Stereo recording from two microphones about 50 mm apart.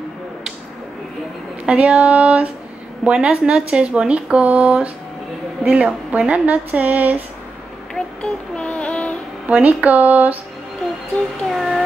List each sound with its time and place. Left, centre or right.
1.7 s speech: right
7.9 s child singing: centre
9.5 s speech: right
11.5 s a sound: centre